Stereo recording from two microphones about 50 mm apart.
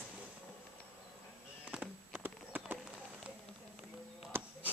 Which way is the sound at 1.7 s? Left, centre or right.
Right.